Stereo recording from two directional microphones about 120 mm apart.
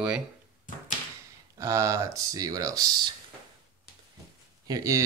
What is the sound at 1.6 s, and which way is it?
Speech, 25° right (ahead or behind).